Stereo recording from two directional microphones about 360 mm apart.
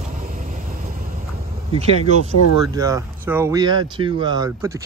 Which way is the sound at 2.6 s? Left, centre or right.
Centre.